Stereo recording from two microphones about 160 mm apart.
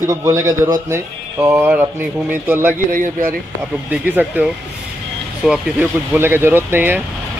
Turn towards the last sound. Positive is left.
turn(degrees=-10)  # may be behind; listen again after turning